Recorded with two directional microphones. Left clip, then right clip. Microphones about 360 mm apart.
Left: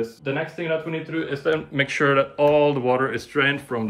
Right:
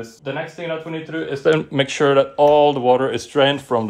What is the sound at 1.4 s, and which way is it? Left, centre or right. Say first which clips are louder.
Speech: right 8 dB; right.